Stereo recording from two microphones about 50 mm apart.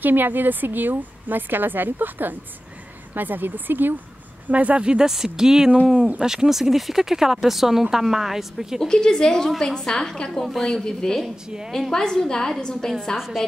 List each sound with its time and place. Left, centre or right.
0.0 s a woman's voice: right
4.5 s speech: right; by 8.8 s centre
8.8 s a woman's voice: centre
10.3 s a woman's voice: centre
11.4 s speech: centre
11.9 s a woman's voice: centre
13.4 s speech: centre